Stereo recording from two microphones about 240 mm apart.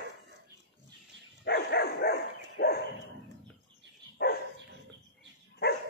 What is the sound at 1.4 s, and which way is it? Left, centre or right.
Dog, left.